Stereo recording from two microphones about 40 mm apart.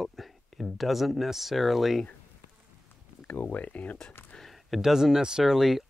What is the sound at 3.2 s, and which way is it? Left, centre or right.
Speech, left.